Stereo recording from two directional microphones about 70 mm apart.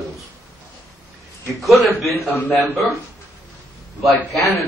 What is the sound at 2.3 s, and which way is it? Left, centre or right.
Speech, left.